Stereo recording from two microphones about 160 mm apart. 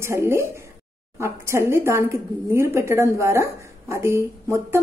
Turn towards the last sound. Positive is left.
turn(degrees=-15)  # may be behind; listen again after turning